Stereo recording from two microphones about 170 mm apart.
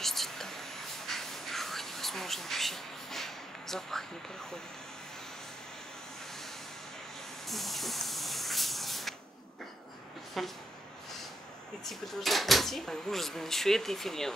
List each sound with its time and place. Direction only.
0.0 s whispering: centre (ahead or behind)
7.4 s spray: centre (ahead or behind)
10.4 s speech: centre (ahead or behind)
11.8 s speech: centre (ahead or behind)